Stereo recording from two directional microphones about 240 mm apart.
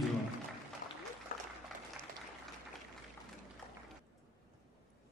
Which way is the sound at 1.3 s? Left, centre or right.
Left.